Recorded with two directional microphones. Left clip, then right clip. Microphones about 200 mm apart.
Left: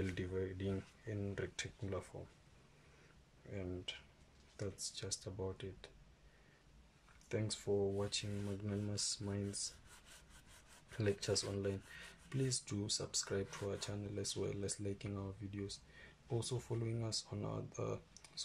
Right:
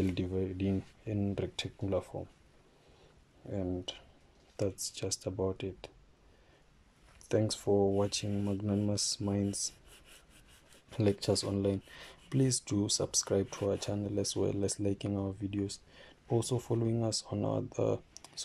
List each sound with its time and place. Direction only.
0.0 s speech: 20° right (ahead or behind)
4.6 s speech: 30° right (ahead or behind)
7.2 s speech: 30° right (ahead or behind)
10.9 s speech: 25° right (ahead or behind)